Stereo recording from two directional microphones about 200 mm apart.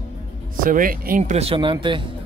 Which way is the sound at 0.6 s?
45° right (ahead or behind).